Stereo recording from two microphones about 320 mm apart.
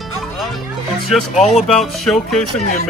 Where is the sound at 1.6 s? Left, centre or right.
Centre.